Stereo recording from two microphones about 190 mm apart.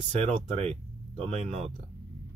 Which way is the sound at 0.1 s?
30° right (ahead or behind).